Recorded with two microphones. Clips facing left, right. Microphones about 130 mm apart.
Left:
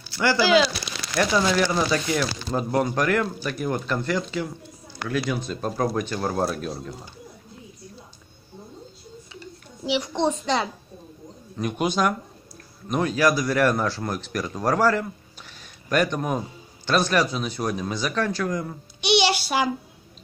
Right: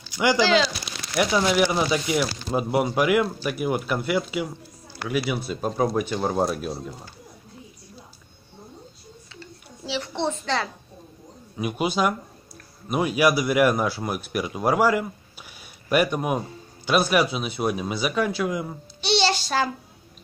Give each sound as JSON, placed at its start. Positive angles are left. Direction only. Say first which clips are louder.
{"t": 0.1, "sound": "speech", "louder": "right 1 dB", "side_deg": -15}
{"t": 0.4, "sound": "speech", "louder": "left 3 dB", "side_deg": 10}
{"t": 1.1, "sound": "a man's voice", "louder": "even", "side_deg": -10}
{"t": 9.3, "sound": "a sound", "louder": "left 2 dB", "side_deg": 15}
{"t": 11.5, "sound": "a man's voice", "louder": "even", "side_deg": -5}
{"t": 18.9, "sound": "child singing", "louder": "left 2 dB", "side_deg": 10}